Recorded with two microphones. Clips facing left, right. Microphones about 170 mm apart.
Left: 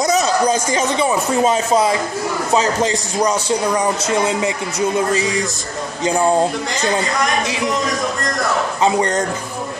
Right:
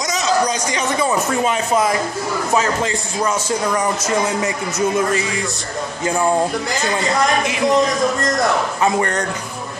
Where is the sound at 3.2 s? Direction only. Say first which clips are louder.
Left 2 dB; 15° left (ahead or behind).